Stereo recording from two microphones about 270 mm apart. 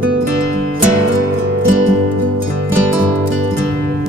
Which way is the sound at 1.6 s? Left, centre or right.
Right.